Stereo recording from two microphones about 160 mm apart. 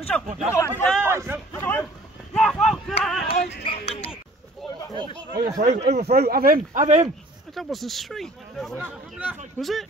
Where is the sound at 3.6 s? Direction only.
35° left (ahead or behind).